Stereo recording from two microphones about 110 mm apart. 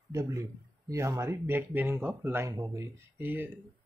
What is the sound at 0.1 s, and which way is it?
Speech, 30° right (ahead or behind).